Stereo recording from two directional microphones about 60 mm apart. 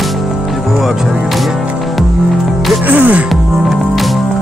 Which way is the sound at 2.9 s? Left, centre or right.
Right.